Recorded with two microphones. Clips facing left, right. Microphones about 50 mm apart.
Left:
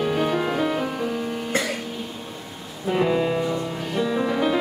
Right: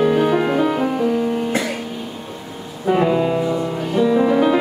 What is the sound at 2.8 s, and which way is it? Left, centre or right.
Music, centre.